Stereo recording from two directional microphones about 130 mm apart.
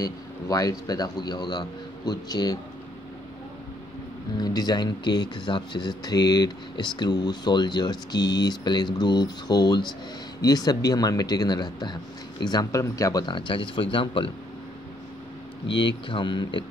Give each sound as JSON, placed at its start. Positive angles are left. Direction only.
{"t": 0.0, "sound": "speech", "side_deg": 30}
{"t": 4.4, "sound": "speech", "side_deg": 30}
{"t": 15.6, "sound": "speech", "side_deg": 40}